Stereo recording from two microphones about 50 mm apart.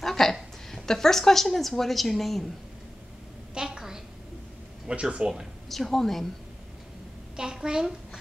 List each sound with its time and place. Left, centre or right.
0.0 s a woman's voice: centre
3.5 s a sound: centre
4.9 s speech: right
5.7 s a woman's voice: centre
7.3 s a child's voice: centre